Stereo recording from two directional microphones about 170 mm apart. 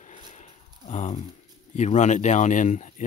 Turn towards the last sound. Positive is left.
turn(degrees=45)  # may be behind; listen again after turning